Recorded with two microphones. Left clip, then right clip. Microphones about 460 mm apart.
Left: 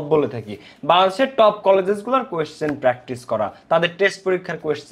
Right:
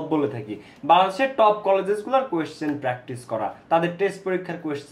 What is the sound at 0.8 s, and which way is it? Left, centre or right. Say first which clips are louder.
Speech: left 2 dB; left.